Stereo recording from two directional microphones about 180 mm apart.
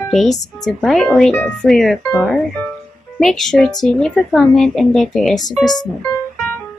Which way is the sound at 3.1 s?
Centre (ahead or behind).